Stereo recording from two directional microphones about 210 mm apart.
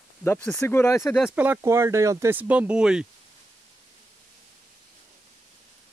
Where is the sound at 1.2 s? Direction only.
5° right (ahead or behind).